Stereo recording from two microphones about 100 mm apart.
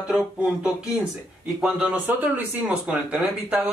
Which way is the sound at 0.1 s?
5° right (ahead or behind).